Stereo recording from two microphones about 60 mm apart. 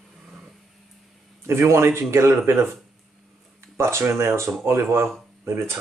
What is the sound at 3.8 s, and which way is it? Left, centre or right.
Speech, right.